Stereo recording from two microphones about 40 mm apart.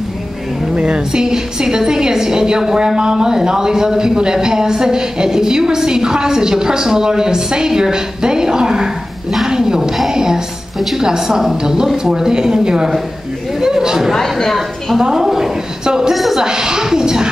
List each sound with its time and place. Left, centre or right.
0.7 s a woman's voice: right
9.5 s a sound: centre
11.0 s a woman's voice: centre
13.6 s chatter: centre
14.4 s a sound: centre
15.0 s a woman's voice: centre
16.1 s speech: centre
16.3 s a woman's voice: centre